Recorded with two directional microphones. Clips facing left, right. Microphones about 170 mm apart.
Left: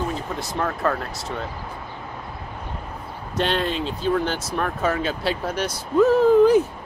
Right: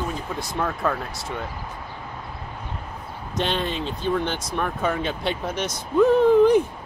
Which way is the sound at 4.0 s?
5° left (ahead or behind).